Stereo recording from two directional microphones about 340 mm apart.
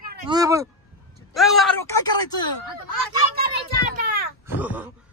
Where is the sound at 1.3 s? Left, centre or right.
Centre.